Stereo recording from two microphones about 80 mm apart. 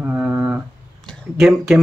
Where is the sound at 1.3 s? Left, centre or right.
Centre.